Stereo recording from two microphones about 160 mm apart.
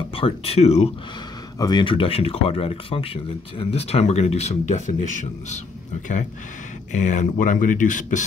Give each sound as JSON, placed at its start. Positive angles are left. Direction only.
{"t": 0.1, "sound": "speech", "side_deg": 35}
{"t": 1.6, "sound": "speech", "side_deg": 25}
{"t": 6.9, "sound": "speech", "side_deg": 50}